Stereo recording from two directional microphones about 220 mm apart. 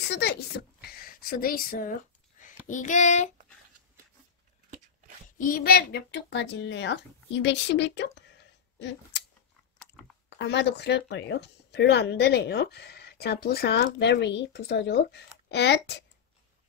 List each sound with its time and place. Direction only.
0.0 s a woman's voice: 50° left (ahead or behind)
2.7 s child singing: 35° left (ahead or behind)
5.5 s speech: 45° left (ahead or behind)
9.1 s scissors: 55° left (ahead or behind)
10.3 s speech: 50° left (ahead or behind)